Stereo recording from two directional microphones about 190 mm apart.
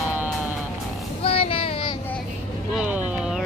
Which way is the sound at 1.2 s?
30° left (ahead or behind).